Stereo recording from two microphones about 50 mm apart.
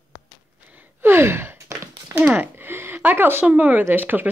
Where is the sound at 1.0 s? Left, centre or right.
Right.